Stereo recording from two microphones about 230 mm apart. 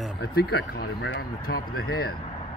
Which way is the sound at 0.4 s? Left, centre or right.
Left.